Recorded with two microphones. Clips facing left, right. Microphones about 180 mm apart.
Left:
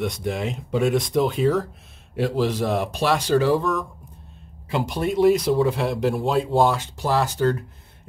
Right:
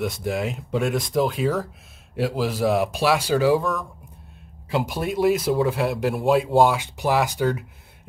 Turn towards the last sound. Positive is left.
turn(degrees=-15)  # may be behind; listen again after turning